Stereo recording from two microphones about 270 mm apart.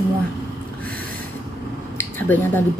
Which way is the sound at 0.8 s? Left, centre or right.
Centre.